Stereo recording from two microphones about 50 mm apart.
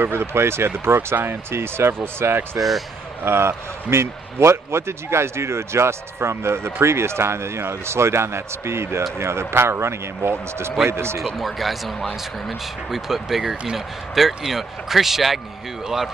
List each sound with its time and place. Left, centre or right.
0.0 s speech: right
1.1 s speech: right
1.5 s speech: right
11.3 s speech: centre